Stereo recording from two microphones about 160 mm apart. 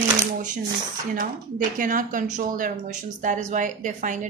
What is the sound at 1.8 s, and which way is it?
A woman's voice, 55° right (ahead or behind).